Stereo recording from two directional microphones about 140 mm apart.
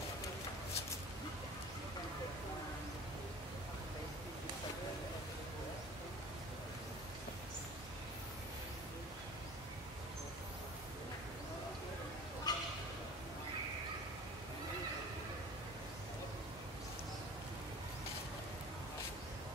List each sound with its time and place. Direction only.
12.5 s bow-wow: 30° left (ahead or behind)